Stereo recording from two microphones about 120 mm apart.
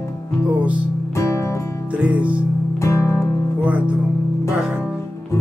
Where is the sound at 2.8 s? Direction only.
25° left (ahead or behind).